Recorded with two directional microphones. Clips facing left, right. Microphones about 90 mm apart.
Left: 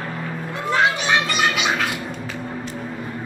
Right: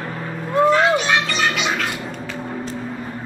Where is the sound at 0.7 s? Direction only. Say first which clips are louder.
Right 2 dB; 15° left (ahead or behind).